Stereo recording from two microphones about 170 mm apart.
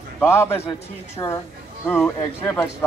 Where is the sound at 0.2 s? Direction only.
15° left (ahead or behind).